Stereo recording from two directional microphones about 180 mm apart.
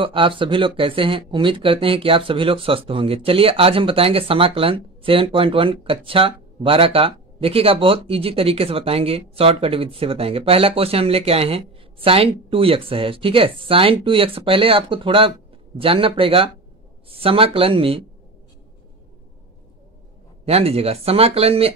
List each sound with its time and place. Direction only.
0.0 s speech: 30° right (ahead or behind)
20.4 s speech: 35° right (ahead or behind)